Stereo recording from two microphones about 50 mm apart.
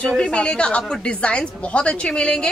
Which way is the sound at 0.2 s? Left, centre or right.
Centre.